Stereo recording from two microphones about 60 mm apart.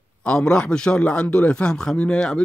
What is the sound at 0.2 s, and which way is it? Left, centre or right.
A man's voice, centre.